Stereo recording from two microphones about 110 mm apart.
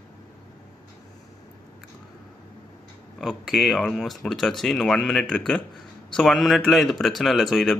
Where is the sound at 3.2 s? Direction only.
Centre (ahead or behind).